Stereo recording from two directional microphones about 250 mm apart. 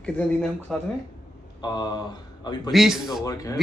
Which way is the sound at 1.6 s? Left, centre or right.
Centre.